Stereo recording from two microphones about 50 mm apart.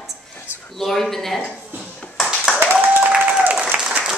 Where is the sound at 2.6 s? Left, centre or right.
Right.